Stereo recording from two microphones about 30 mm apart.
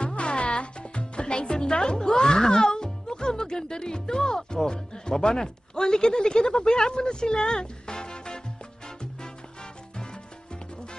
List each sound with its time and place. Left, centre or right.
0.0 s music: left
4.9 s speech: left
8.8 s music: left